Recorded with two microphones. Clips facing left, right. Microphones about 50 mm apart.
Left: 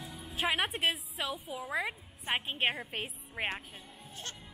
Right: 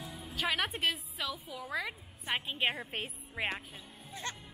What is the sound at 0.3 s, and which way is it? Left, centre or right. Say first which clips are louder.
Music: left 2 dB; left.